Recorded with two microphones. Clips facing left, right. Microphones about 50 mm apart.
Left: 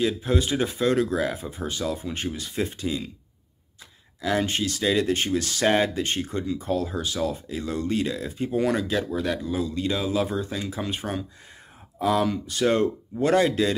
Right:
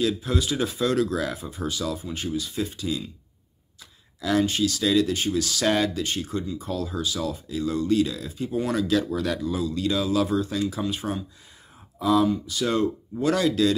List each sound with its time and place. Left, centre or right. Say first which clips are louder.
0.0 s speech: left 1 dB; left
4.2 s speech: right 2 dB; left
4.5 s speech: right 1 dB; left
8.7 s speech: right 2 dB; left